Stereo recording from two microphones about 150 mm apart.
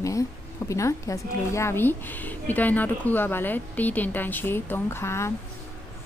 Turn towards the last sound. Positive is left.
turn(degrees=20)  # may be behind; listen again after turning